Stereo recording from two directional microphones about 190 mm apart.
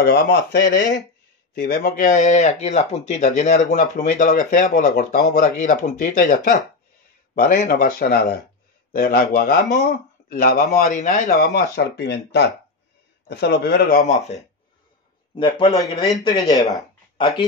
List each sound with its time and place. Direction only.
0.0 s speech: 55° left (ahead or behind)
11.7 s speech: 60° left (ahead or behind)
15.3 s speech: 25° left (ahead or behind)